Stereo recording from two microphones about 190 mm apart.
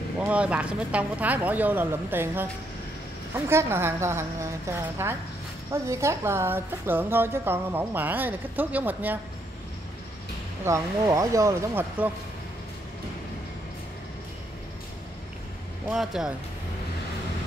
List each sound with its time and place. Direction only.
0.2 s a woman's voice: 5° right (ahead or behind)
10.6 s a woman's voice: 15° right (ahead or behind)
15.9 s speech: centre (ahead or behind)